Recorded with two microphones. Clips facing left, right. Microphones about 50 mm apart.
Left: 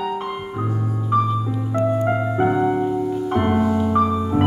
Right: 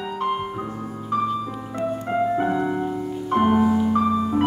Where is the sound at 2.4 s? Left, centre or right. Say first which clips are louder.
Left 4 dB; centre.